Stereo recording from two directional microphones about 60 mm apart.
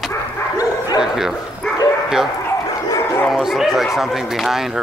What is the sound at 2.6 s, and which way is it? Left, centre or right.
Bow-wow, left.